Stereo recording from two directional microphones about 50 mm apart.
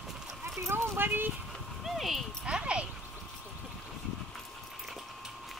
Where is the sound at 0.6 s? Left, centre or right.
Right.